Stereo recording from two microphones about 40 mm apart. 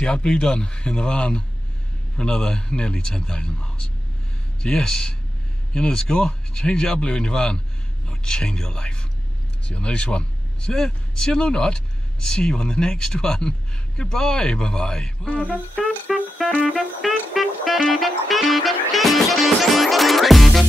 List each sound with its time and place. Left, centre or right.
0.0 s a man's voice: left
10.7 s speech: centre
16.1 s speech: centre